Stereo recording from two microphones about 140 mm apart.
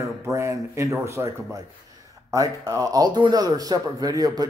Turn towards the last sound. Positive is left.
turn(degrees=-25)  # may be behind; listen again after turning